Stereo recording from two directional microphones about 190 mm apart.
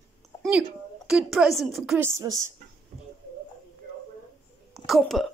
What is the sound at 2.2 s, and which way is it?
Speech, 20° right (ahead or behind).